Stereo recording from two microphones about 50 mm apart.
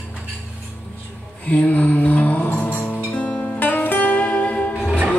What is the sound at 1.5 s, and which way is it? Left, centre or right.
Music, left.